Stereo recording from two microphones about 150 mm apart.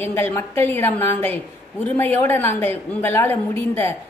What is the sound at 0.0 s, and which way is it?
A woman's voice, 15° left (ahead or behind).